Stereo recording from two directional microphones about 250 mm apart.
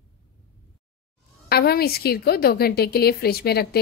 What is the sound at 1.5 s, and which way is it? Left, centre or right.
A woman's voice, left.